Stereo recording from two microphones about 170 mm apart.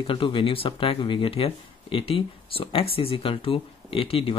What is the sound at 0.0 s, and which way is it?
Speech, 30° left (ahead or behind).